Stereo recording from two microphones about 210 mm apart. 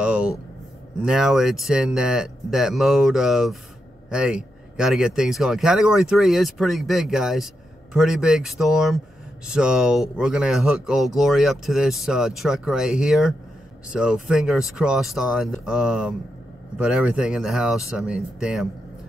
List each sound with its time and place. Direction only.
0.0 s vehicle: 5° right (ahead or behind)
1.0 s speech: centre (ahead or behind)